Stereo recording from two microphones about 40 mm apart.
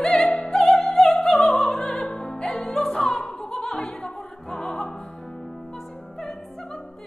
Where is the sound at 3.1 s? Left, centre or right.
Left.